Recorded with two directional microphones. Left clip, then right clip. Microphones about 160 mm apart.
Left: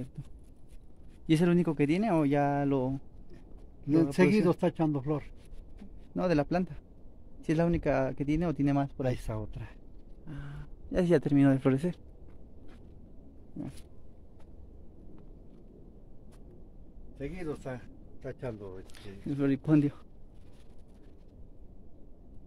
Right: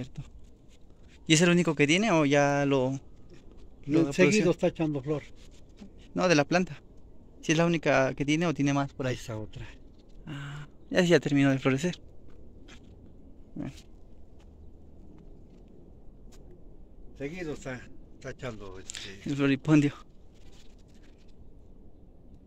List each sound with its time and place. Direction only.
1.2 s speech: centre (ahead or behind)
4.4 s speech: 90° left
6.1 s speech: centre (ahead or behind)
8.7 s speech: 15° left (ahead or behind)
9.1 s speech: 85° left
10.2 s a sound: 15° right (ahead or behind)
10.9 s speech: centre (ahead or behind)
11.1 s speech: 20° left (ahead or behind)
17.2 s speech: 15° left (ahead or behind)
18.2 s a man's voice: 45° left (ahead or behind)
18.9 s speech: 5° left (ahead or behind)